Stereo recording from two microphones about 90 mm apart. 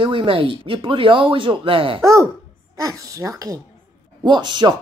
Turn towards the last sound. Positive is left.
turn(degrees=-55)  # may be behind; listen again after turning